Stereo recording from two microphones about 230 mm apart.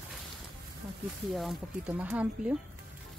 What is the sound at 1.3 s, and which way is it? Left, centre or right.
Speech, centre.